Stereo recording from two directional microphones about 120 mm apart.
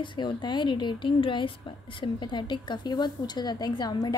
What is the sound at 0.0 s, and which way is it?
A woman's voice, 40° left (ahead or behind).